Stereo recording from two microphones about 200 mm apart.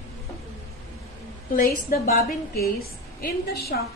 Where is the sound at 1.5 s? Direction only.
45° left (ahead or behind).